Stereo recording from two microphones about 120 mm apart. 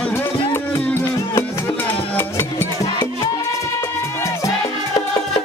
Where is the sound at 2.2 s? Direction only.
20° left (ahead or behind).